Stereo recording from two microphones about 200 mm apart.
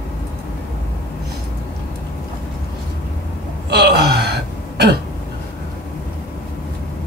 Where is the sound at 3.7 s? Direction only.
55° right (ahead or behind).